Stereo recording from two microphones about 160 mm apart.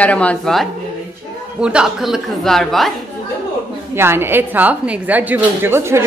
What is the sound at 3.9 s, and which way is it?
A woman's voice, 15° right (ahead or behind).